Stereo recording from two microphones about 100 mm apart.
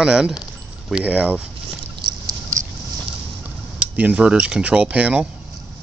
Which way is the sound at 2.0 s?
45° right (ahead or behind).